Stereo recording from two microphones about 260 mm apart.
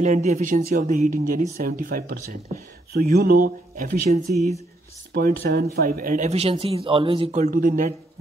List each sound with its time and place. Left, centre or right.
0.0 s speech: right